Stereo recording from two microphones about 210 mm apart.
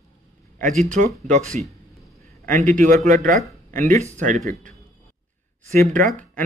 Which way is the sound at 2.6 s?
40° right (ahead or behind).